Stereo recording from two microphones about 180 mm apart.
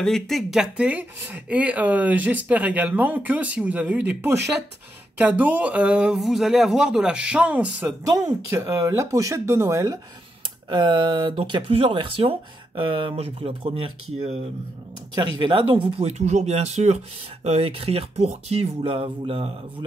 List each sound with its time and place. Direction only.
0.0 s speech: centre (ahead or behind)
8.1 s speech: 20° right (ahead or behind)